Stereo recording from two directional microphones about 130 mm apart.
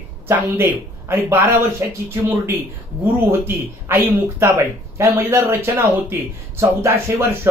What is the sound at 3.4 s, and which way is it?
Speech, 15° right (ahead or behind).